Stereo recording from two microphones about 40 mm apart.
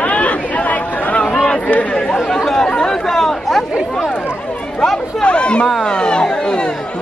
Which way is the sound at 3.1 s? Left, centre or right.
Centre.